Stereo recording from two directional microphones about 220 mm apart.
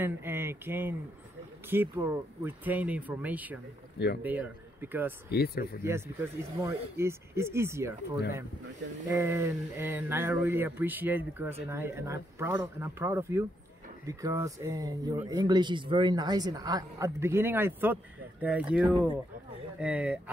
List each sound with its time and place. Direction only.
0.0 s speech: 10° right (ahead or behind)
5.3 s speech: 45° left (ahead or behind)
5.9 s speech: 10° right (ahead or behind)
9.1 s speech: 10° right (ahead or behind)